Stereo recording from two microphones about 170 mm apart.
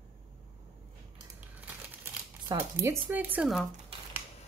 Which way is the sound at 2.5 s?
15° right (ahead or behind).